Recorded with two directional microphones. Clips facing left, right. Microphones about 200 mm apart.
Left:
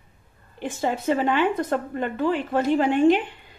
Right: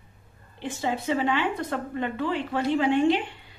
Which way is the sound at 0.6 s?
45° left (ahead or behind).